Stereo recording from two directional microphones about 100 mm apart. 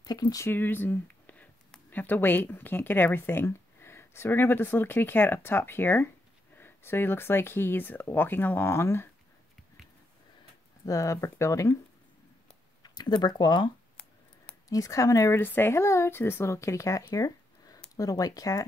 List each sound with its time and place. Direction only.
0.0 s speech: 40° left (ahead or behind)
0.5 s speech: 20° left (ahead or behind)
10.9 s speech: 30° left (ahead or behind)
12.8 s speech: 45° left (ahead or behind)
14.7 s speech: 35° left (ahead or behind)
15.4 s speech: 20° left (ahead or behind)